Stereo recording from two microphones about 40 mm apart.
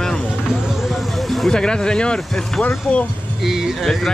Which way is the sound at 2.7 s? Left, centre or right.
Left.